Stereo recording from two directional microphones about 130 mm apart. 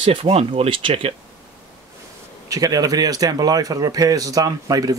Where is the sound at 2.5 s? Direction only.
25° right (ahead or behind).